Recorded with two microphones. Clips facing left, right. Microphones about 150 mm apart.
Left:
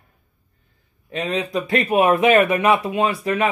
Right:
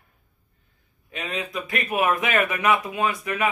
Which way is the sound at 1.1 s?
35° left (ahead or behind).